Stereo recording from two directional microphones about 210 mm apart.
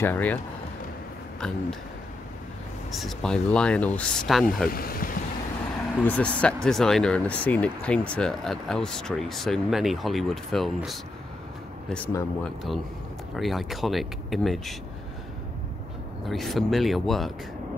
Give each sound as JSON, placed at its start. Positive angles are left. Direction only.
{"t": 0.0, "sound": "speech", "side_deg": 10}
{"t": 2.9, "sound": "speech", "side_deg": 0}
{"t": 4.6, "sound": "speech", "side_deg": 45}
{"t": 6.0, "sound": "speech", "side_deg": 5}
{"t": 16.3, "sound": "speech", "side_deg": 0}